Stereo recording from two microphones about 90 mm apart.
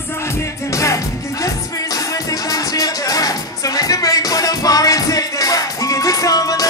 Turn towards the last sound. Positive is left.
turn(degrees=45)  # may be behind; listen again after turning